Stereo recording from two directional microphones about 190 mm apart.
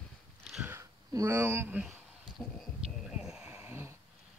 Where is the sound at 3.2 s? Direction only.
5° right (ahead or behind).